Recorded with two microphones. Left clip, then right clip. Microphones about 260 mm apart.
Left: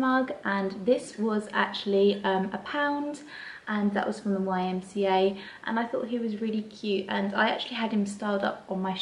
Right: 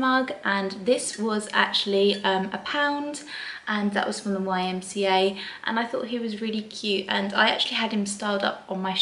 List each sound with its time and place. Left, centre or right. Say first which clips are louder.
0.0 s speech: right 3 dB; centre
4.3 s a woman's voice: right 2 dB; centre
4.6 s speech: right 2 dB; centre